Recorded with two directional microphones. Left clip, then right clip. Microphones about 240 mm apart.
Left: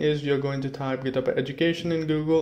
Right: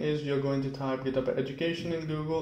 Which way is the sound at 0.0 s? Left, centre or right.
Left.